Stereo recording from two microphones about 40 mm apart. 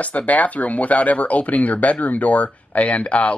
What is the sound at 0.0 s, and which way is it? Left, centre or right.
Speech, left.